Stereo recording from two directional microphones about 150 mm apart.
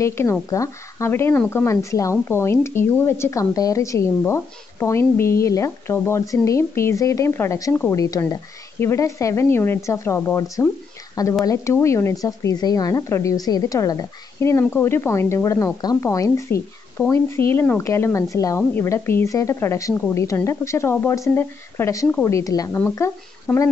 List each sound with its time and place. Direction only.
0.0 s a woman's voice: 20° left (ahead or behind)